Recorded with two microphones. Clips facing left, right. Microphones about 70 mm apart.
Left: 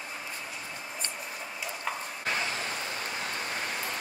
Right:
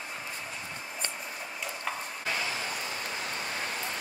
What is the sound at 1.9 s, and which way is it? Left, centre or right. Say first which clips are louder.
Stir: left 1 dB; centre.